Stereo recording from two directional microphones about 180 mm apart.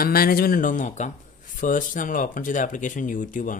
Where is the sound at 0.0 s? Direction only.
55° left (ahead or behind).